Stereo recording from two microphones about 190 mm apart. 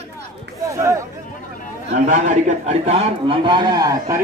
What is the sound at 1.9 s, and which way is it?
A man's voice, 40° right (ahead or behind).